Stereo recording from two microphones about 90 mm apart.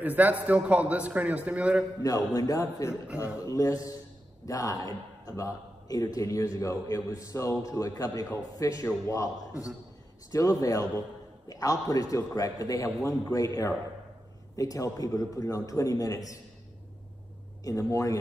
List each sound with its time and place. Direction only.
0.0 s a man's voice: 15° right (ahead or behind)
2.0 s a man's voice: 40° left (ahead or behind)
17.6 s a man's voice: 40° left (ahead or behind)